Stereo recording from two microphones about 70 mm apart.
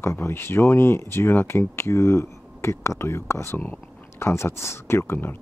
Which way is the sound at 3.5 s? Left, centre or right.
Left.